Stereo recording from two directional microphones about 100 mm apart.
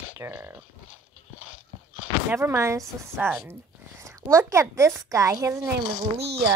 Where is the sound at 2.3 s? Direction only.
25° right (ahead or behind).